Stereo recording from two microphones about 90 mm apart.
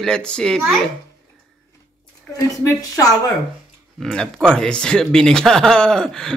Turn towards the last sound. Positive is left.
turn(degrees=5)  # may be behind; listen again after turning